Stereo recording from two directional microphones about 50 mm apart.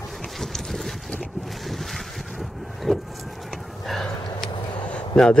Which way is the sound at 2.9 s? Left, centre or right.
Centre.